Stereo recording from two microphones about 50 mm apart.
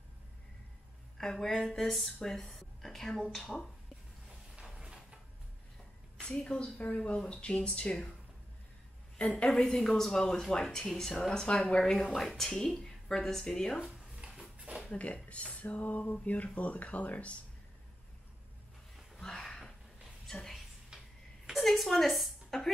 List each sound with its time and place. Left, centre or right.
1.1 s a woman's voice: centre
4.3 s a sound: centre
6.2 s speech: centre
9.5 s speech: centre
12.1 s speech: centre
12.4 s speech: centre
13.7 s dishes: centre
14.7 s a sound: right
15.1 s speech: left
19.1 s a sound: centre
20.9 s tick-tock: centre
21.5 s a sound: centre